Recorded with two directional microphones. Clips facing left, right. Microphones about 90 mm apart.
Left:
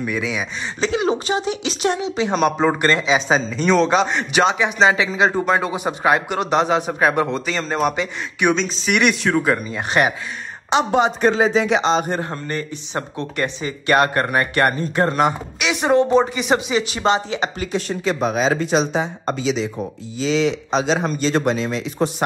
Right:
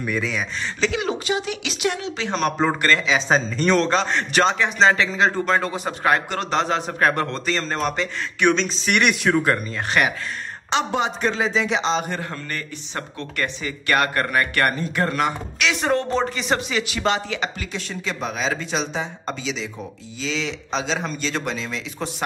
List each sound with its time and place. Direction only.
0.0 s speech: 5° left (ahead or behind)
0.7 s speech: 30° left (ahead or behind)
2.0 s a man's voice: 10° left (ahead or behind)
2.8 s speech: 20° left (ahead or behind)
3.2 s a man's voice: 5° left (ahead or behind)
9.8 s speech: 25° left (ahead or behind)
11.0 s speech: 45° left (ahead or behind)
12.1 s a man's voice: 30° left (ahead or behind)
16.8 s speech: 25° left (ahead or behind)
17.7 s speech: 45° left (ahead or behind)